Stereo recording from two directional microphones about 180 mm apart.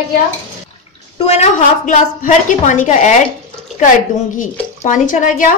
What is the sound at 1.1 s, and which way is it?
A woman's voice, 35° left (ahead or behind).